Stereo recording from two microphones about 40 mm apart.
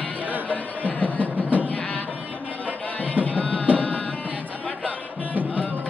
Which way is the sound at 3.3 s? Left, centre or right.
Left.